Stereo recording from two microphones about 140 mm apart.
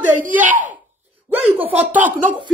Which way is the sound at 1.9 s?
10° right (ahead or behind).